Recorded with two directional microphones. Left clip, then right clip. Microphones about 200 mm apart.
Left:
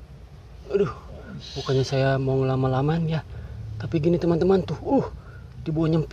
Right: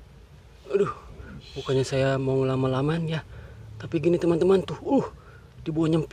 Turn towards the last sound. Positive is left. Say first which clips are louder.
# even
turn(degrees=-15)  # may be behind; listen again after turning